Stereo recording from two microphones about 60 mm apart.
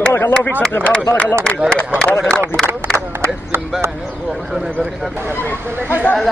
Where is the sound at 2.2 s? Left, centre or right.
Centre.